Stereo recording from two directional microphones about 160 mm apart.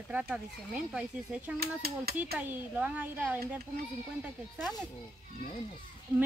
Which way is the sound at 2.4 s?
10° right (ahead or behind).